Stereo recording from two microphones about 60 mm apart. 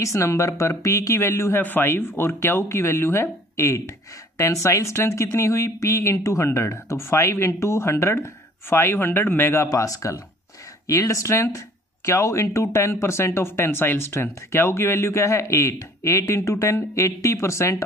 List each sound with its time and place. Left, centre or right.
0.0 s speech: left
1.6 s speech: left
9.7 s speech: left
11.1 s speech: left